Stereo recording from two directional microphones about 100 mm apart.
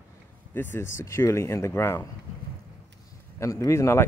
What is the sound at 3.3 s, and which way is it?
Speech, 30° left (ahead or behind).